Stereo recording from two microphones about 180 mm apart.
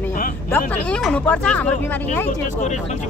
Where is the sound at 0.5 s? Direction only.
5° left (ahead or behind).